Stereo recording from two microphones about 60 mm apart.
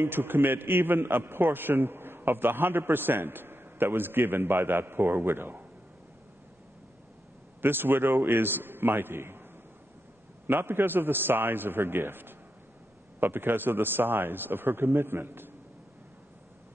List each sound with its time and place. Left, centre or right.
0.0 s a man's voice: right
7.6 s a man's voice: right
10.4 s a man's voice: right